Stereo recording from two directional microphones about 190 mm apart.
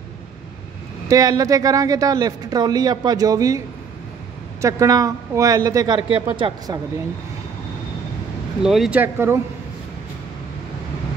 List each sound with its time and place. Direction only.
1.0 s a man's voice: 20° right (ahead or behind)
8.6 s a man's voice: centre (ahead or behind)